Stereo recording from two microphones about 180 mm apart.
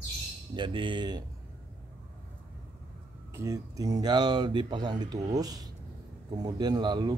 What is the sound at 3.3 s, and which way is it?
Speech, 20° right (ahead or behind).